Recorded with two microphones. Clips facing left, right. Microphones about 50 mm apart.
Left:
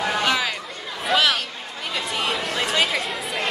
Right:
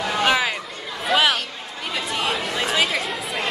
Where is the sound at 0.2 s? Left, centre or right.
Centre.